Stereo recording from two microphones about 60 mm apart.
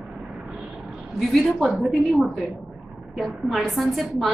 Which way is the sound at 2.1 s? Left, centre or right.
Right.